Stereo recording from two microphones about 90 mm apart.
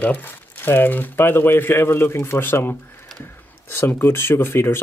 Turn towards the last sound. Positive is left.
turn(degrees=25)  # may be behind; listen again after turning